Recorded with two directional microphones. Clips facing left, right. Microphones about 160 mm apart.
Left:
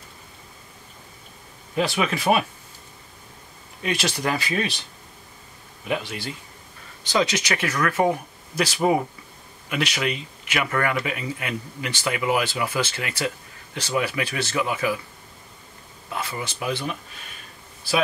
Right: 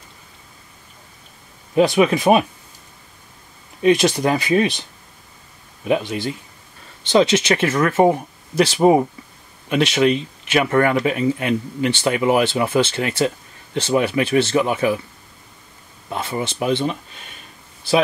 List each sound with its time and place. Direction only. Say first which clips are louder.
1.8 s speech: right 9 dB; 20° right (ahead or behind)
3.8 s speech: right 10 dB; 20° right (ahead or behind)
5.9 s speech: right 8 dB; 20° right (ahead or behind)
16.1 s speech: right 6 dB; 25° right (ahead or behind)